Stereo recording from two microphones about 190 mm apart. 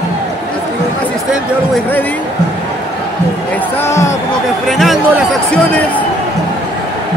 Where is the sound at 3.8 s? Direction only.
15° left (ahead or behind).